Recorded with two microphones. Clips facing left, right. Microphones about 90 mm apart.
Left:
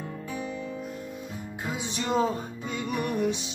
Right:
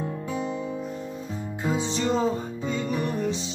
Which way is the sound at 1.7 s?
10° left (ahead or behind).